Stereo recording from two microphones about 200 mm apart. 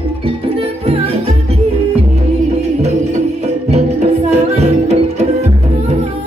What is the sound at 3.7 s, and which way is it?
Music, 30° right (ahead or behind).